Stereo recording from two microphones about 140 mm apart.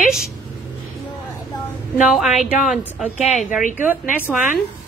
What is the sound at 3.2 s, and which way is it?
Speech, 55° left (ahead or behind).